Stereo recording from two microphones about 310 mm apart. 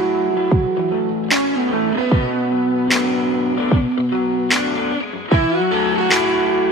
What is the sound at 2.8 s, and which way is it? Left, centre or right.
Music, centre.